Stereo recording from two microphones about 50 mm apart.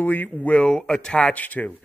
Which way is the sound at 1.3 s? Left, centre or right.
Left.